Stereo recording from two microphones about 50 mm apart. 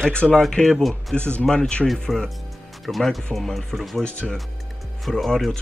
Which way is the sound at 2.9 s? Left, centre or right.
Centre.